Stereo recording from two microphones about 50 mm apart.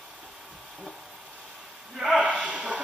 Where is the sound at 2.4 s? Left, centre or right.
Centre.